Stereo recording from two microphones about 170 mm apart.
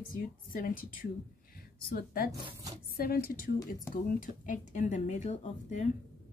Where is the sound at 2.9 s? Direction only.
60° left (ahead or behind); by 5.9 s 45° left (ahead or behind).